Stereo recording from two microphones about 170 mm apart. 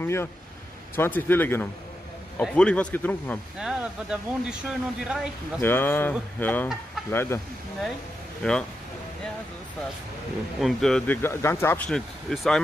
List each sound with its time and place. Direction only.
0.0 s a man's voice: 15° left (ahead or behind)
3.5 s speech: 5° right (ahead or behind)
5.6 s a man's voice: 15° left (ahead or behind)
8.4 s speech: 5° left (ahead or behind)
10.6 s speech: 5° left (ahead or behind)